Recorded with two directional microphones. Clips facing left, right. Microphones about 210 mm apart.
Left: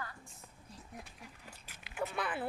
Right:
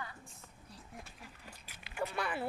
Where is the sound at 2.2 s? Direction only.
Centre (ahead or behind).